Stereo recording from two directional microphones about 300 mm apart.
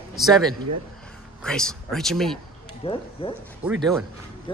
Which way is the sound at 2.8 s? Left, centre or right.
Centre.